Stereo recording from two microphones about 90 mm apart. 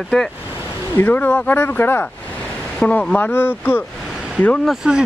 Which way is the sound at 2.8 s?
10° left (ahead or behind).